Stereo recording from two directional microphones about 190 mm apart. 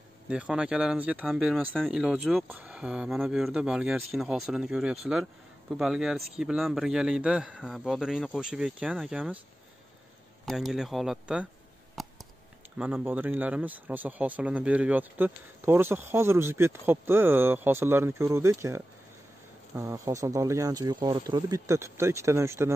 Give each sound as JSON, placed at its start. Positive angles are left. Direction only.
{"t": 0.3, "sound": "a man's voice", "side_deg": -5}
{"t": 10.4, "sound": "a man's voice", "side_deg": 0}
{"t": 12.0, "sound": "a sound", "side_deg": 0}
{"t": 12.7, "sound": "speech", "side_deg": -10}